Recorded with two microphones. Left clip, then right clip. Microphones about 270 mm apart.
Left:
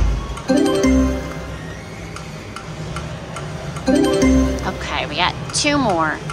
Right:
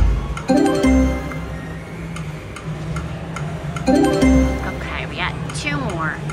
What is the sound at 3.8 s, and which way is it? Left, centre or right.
Music, centre.